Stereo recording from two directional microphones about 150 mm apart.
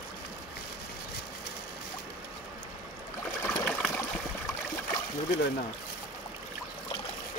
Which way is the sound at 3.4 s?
5° left (ahead or behind).